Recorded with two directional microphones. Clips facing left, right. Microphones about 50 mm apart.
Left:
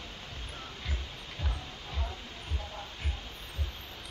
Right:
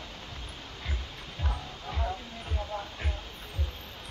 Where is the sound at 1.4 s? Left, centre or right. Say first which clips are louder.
Right 7 dB; centre.